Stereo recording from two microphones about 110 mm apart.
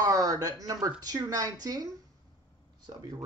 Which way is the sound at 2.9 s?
35° right (ahead or behind).